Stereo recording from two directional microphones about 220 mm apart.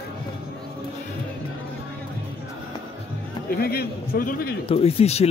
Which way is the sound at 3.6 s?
45° left (ahead or behind).